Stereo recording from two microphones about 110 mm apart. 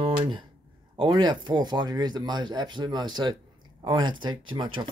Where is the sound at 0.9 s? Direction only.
40° right (ahead or behind).